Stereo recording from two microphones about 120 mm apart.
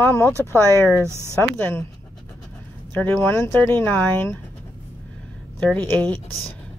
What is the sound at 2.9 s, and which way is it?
Speech, 15° left (ahead or behind).